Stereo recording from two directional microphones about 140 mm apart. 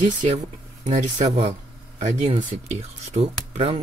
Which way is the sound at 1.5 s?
55° right (ahead or behind).